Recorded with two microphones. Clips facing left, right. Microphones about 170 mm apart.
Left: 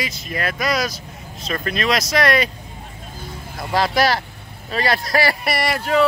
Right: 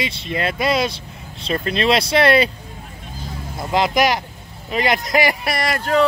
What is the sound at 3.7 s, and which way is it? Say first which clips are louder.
Speech: right 1 dB; 20° right (ahead or behind).